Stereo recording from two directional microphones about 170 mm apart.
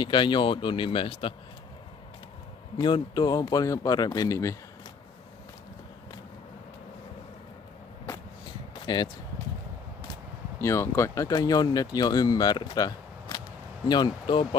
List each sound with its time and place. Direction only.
0.0 s speech: 25° left (ahead or behind)
2.8 s speech: 25° left (ahead or behind)
8.7 s speech: 25° left (ahead or behind)
10.6 s speech: 15° left (ahead or behind)